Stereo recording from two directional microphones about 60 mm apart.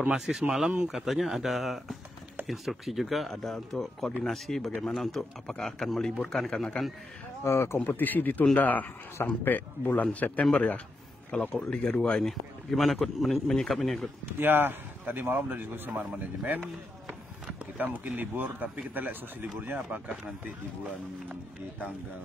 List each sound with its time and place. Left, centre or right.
0.1 s speech: centre
1.0 s a man's voice: centre
7.4 s speech: left
7.8 s a man's voice: left; by 12.3 s centre
12.3 s speech: centre
14.4 s speech: right
17.7 s speech: right
21.3 s speech: right